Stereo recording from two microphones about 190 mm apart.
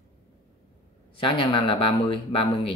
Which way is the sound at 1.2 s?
25° left (ahead or behind).